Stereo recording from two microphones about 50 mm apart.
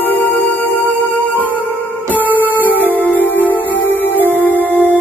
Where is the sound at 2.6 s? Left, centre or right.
Left.